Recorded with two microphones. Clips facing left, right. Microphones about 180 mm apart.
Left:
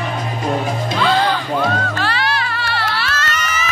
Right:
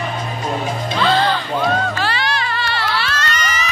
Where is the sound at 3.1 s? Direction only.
5° left (ahead or behind).